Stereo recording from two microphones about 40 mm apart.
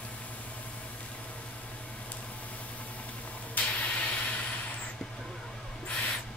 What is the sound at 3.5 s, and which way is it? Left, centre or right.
Vehicle, left.